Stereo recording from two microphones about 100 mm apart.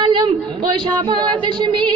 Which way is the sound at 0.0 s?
45° right (ahead or behind).